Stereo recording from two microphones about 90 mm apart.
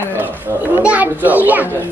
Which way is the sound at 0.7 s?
15° right (ahead or behind).